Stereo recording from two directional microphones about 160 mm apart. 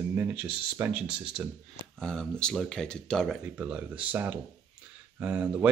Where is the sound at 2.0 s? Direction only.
5° left (ahead or behind).